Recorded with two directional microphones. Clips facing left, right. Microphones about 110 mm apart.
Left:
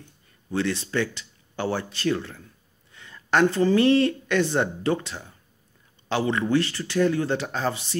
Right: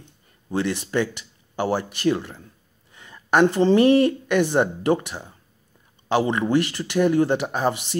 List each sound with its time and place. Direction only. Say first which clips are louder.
0.0 s a woman's voice: even; 15° right (ahead or behind)